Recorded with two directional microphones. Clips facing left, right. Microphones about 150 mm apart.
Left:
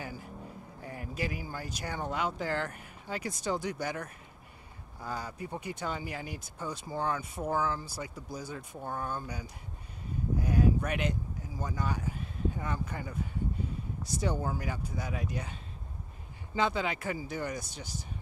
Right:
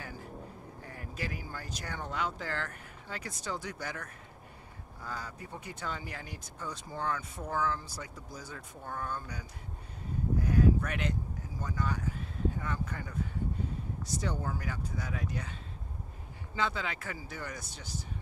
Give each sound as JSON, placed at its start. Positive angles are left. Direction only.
{"t": 0.8, "sound": "speech", "side_deg": 15}
{"t": 10.4, "sound": "a sound", "side_deg": 15}
{"t": 11.6, "sound": "speech", "side_deg": 15}
{"t": 16.5, "sound": "speech", "side_deg": 15}